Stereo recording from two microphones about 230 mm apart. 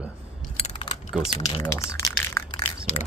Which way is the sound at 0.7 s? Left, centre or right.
Left.